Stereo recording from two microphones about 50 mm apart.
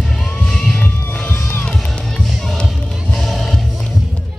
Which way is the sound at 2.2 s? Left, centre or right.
Centre.